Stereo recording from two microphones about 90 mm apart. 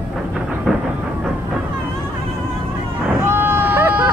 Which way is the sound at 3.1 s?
25° right (ahead or behind).